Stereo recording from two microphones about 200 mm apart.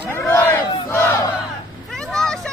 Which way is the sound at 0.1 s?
10° left (ahead or behind).